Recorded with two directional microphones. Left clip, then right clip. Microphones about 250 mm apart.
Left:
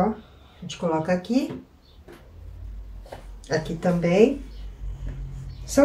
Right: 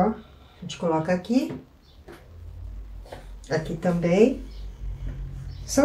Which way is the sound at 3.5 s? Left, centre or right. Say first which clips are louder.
Left 1 dB; centre.